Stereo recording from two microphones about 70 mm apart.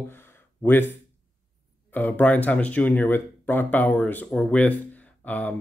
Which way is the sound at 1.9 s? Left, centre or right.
Left.